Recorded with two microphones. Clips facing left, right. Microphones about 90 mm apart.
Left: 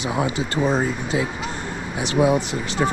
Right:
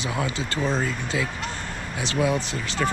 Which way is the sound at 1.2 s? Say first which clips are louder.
Left 3 dB; 5° left (ahead or behind).